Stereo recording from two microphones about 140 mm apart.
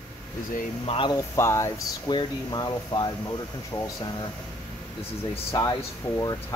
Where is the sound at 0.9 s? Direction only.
35° left (ahead or behind).